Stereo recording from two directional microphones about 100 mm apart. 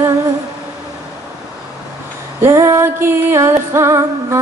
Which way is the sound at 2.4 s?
25° right (ahead or behind).